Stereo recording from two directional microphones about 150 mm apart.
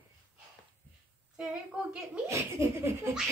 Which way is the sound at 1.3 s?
5° right (ahead or behind).